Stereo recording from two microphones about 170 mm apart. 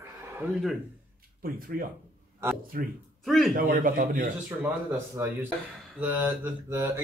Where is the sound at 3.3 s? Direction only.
Centre (ahead or behind).